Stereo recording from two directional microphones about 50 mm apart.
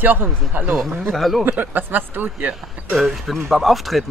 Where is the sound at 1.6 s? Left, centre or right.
Right.